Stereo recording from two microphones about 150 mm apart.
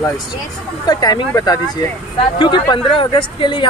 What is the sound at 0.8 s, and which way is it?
Speech, 30° left (ahead or behind).